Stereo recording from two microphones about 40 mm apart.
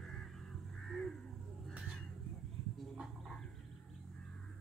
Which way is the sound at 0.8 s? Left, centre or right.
Centre.